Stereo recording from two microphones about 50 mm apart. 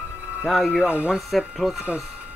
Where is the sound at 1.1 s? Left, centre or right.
Centre.